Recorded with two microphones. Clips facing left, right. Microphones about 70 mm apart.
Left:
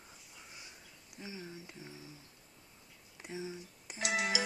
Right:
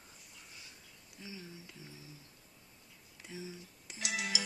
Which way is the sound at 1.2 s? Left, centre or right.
Left.